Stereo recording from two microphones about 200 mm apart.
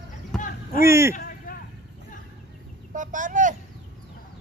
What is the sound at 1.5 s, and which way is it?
Vehicle, 45° left (ahead or behind).